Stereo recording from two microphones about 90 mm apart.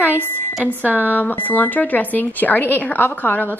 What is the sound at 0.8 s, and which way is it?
Speech, 20° right (ahead or behind).